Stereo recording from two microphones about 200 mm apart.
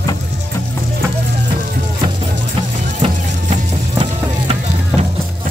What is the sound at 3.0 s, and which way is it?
Music, 35° right (ahead or behind).